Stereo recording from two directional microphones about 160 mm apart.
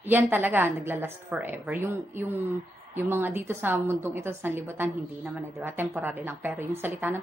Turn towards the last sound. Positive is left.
turn(degrees=-15)  # may be behind; listen again after turning